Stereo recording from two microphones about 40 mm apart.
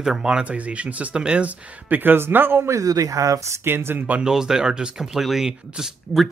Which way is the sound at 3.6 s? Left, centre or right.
Right.